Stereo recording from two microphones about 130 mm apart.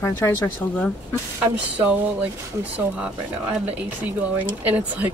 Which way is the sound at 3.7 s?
10° right (ahead or behind).